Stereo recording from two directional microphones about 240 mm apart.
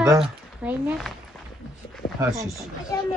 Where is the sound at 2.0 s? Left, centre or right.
Left.